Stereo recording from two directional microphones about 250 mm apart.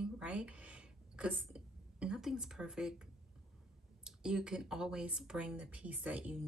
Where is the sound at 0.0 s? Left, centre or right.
Centre.